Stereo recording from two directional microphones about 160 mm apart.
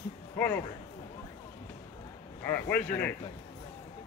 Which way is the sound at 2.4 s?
10° left (ahead or behind).